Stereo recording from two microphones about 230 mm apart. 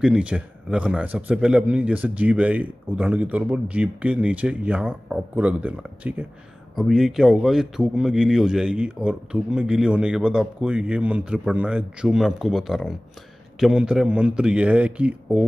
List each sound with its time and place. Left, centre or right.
0.0 s a man's voice: centre